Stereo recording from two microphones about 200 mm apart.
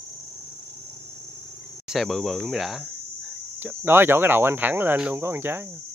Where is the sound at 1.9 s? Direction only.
Centre (ahead or behind).